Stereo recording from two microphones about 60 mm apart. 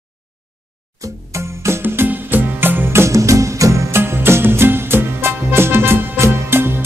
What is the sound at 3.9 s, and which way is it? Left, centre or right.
Music, right.